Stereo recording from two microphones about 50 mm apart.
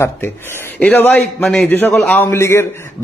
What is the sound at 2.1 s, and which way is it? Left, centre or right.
Speech, left.